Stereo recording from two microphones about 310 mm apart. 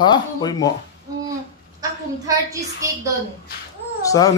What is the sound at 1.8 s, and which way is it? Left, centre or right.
A woman's voice, centre.